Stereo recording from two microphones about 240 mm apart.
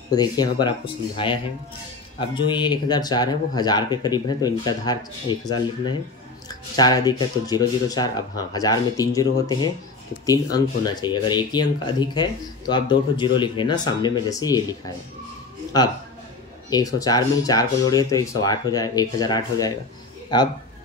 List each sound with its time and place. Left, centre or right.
0.1 s speech: centre
16.7 s speech: centre